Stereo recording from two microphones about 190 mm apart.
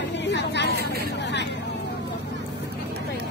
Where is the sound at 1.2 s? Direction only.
65° left (ahead or behind).